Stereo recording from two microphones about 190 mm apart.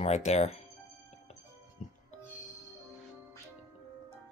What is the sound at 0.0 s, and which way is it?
Speech, 35° left (ahead or behind).